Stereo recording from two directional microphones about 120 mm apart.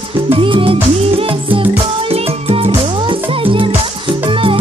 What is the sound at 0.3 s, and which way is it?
Music, 45° right (ahead or behind).